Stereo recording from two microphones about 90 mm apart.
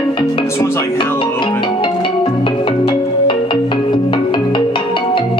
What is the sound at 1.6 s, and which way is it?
Music, 65° left (ahead or behind).